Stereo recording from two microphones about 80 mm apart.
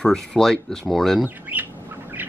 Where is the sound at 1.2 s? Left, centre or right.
Centre.